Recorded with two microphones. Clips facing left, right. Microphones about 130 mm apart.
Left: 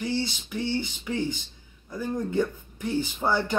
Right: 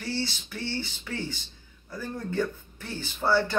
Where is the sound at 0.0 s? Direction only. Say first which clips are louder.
Left 3 dB; 15° left (ahead or behind).